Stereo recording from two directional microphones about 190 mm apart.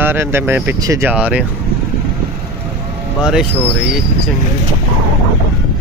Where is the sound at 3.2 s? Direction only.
5° right (ahead or behind).